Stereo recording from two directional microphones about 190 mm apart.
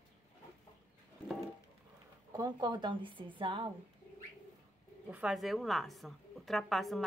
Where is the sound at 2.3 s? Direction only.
20° right (ahead or behind).